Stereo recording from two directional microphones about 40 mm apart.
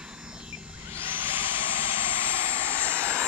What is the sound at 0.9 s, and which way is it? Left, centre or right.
Vehicle, right.